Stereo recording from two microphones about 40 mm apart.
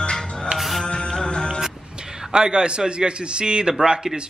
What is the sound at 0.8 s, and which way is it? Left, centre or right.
Music, left.